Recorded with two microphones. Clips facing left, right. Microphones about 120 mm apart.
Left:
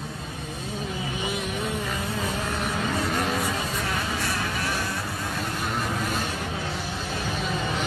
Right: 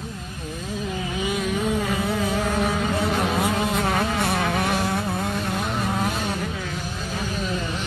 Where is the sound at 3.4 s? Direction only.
60° right (ahead or behind).